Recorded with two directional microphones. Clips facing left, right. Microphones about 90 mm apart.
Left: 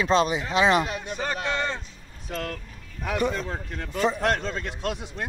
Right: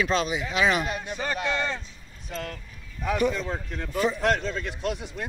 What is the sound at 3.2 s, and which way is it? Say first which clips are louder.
Speech: even; 45° left (ahead or behind).